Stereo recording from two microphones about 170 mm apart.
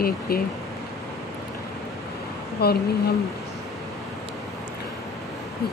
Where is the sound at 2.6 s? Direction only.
70° left (ahead or behind).